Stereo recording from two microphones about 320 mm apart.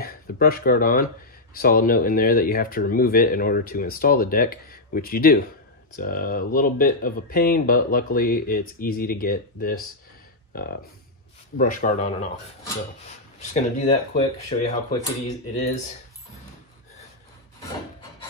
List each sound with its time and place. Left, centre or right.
0.0 s speech: left
11.5 s speech: left
13.4 s speech: left